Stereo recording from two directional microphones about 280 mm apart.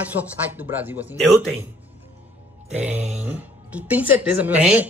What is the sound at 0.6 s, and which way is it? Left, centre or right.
Speech, centre.